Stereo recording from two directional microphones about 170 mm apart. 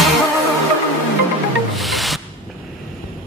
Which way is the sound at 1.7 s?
Centre (ahead or behind).